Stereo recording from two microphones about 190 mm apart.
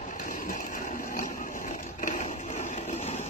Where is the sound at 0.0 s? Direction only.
45° left (ahead or behind).